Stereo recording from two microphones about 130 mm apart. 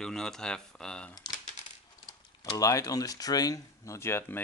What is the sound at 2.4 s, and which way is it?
Speech, 30° left (ahead or behind).